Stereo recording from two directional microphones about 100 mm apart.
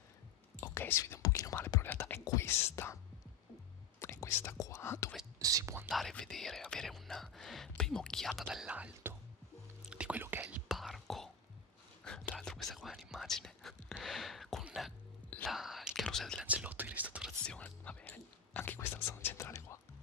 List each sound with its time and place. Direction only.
0.6 s speech: 25° left (ahead or behind)
4.0 s whispering: 25° left (ahead or behind)
4.6 s speech: 30° left (ahead or behind)
5.4 s speech: 35° right (ahead or behind)
5.9 s speech: centre (ahead or behind)
8.6 s speech: 15° right (ahead or behind)
9.8 s whispering: 10° right (ahead or behind)
12.0 s speech: 10° left (ahead or behind)
14.6 s throat clearing: 5° right (ahead or behind)
15.4 s whispering: centre (ahead or behind)
16.4 s speech: 15° right (ahead or behind)
17.5 s speech: 10° left (ahead or behind); by 19.8 s 30° left (ahead or behind)